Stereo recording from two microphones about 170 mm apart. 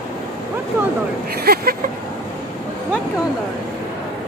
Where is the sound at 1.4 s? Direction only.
65° right (ahead or behind).